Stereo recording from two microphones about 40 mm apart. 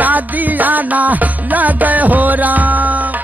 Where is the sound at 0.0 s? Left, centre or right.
Right.